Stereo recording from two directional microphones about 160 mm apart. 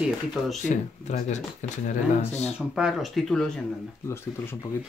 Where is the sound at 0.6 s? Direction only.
50° left (ahead or behind).